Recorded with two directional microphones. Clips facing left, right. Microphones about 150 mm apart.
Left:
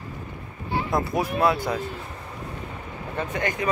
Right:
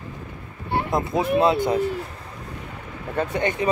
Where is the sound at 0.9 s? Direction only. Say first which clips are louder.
Right 4 dB; 25° right (ahead or behind).